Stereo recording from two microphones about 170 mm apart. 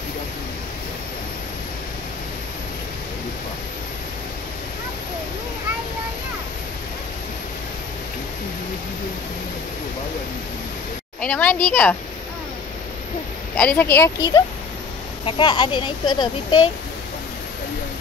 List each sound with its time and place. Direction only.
11.1 s a woman's voice: 10° left (ahead or behind)
13.6 s a woman's voice: 10° left (ahead or behind)
15.2 s speech: 30° left (ahead or behind)